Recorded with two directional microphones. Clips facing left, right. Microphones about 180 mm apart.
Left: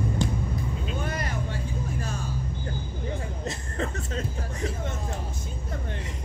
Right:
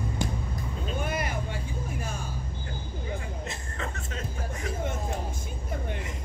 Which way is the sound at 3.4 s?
35° left (ahead or behind).